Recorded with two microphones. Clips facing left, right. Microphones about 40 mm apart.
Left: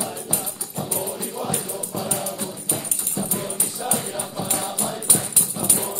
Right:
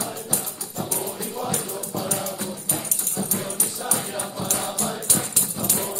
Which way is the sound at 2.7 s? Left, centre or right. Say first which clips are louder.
Left 1 dB; left.